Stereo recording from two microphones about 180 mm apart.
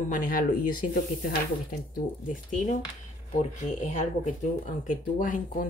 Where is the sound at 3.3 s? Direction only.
40° left (ahead or behind).